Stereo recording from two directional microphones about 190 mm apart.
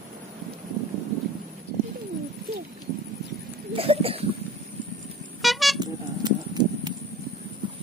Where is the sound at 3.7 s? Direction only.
30° right (ahead or behind).